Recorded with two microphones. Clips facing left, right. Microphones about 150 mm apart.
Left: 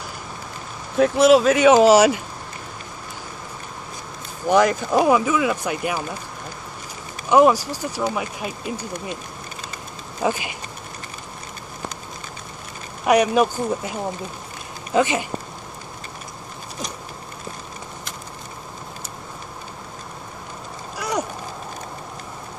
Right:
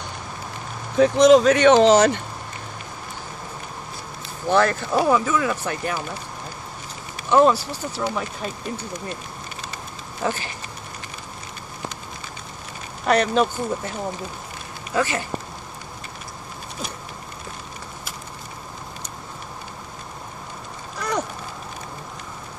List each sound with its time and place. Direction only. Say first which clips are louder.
0.9 s speech: right 1 dB; 5° left (ahead or behind)
4.5 s speech: left 2 dB; 15° left (ahead or behind)
7.2 s speech: left 2 dB; 15° left (ahead or behind)
10.2 s speech: left 3 dB; 15° left (ahead or behind)
13.0 s speech: left 2 dB; 10° left (ahead or behind)
15.0 s speech: left 4 dB; 20° left (ahead or behind)
21.0 s a sound: left 1 dB; 10° left (ahead or behind)